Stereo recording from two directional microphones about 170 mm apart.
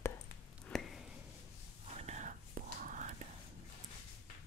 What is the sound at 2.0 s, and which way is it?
Whispering, 40° right (ahead or behind).